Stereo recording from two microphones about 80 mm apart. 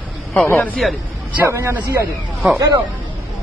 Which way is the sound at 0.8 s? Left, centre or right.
Centre.